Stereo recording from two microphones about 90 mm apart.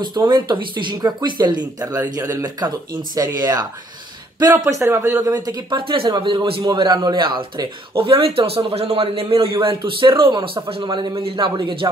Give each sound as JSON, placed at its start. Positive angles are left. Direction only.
{"t": 0.0, "sound": "speech", "side_deg": -55}
{"t": 0.9, "sound": "speech", "side_deg": -50}
{"t": 5.2, "sound": "speech", "side_deg": -45}
{"t": 5.8, "sound": "speech", "side_deg": -70}
{"t": 11.1, "sound": "speech", "side_deg": -80}